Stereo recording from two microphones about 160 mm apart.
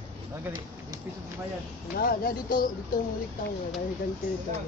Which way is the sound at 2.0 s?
65° left (ahead or behind).